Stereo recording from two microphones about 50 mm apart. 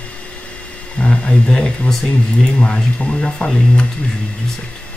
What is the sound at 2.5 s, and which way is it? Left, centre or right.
Speech, centre.